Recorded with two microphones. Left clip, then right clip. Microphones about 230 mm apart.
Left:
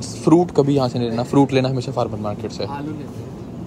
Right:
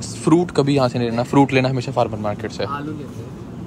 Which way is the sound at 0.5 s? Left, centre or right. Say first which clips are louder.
Even; right.